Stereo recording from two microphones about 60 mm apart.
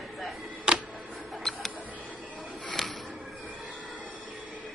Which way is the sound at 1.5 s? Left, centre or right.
Centre.